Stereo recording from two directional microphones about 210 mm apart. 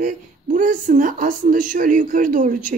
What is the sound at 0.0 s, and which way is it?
Speech, 40° right (ahead or behind).